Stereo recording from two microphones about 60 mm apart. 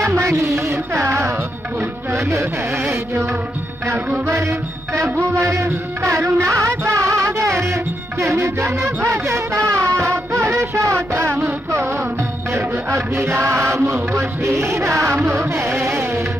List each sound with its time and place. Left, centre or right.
0.0 s a sound: right
0.9 s music: right
2.2 s music: right
4.3 s music: right
10.5 s a sound: right
13.1 s music: right